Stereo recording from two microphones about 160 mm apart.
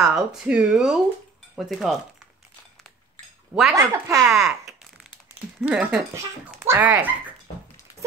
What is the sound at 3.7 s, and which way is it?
Speech, 20° right (ahead or behind).